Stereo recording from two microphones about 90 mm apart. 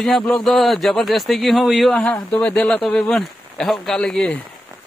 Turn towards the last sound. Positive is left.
turn(degrees=10)  # may be behind; listen again after turning